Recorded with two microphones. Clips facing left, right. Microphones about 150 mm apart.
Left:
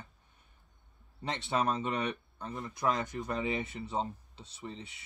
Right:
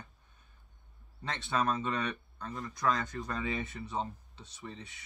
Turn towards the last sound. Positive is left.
turn(degrees=25)  # may be behind; listen again after turning